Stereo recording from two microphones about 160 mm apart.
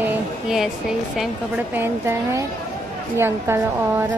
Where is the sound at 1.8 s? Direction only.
15° right (ahead or behind).